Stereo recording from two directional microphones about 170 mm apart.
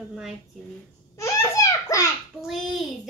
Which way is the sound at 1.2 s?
20° left (ahead or behind).